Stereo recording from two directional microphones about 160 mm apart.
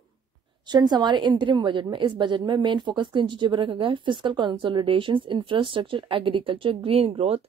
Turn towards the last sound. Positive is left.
turn(degrees=-40)  # may be behind; listen again after turning